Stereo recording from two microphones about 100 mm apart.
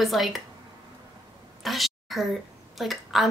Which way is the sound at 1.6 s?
Centre (ahead or behind).